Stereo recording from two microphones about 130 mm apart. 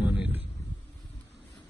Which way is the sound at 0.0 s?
10° right (ahead or behind).